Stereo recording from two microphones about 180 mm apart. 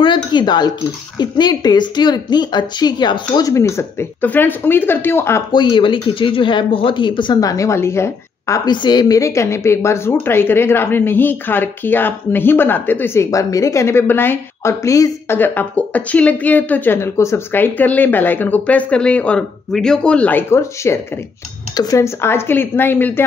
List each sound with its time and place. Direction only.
0.0 s a woman's voice: 25° left (ahead or behind)
5.6 s speech: 25° left (ahead or behind); by 23.2 s 10° left (ahead or behind)